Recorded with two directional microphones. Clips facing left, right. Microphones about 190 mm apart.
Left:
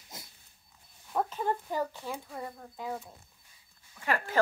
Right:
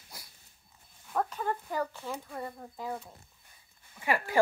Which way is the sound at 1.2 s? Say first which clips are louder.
Left 2 dB; 20° left (ahead or behind).